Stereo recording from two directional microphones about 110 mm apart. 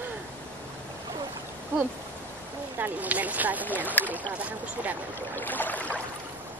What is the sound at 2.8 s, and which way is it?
Speech, 15° right (ahead or behind).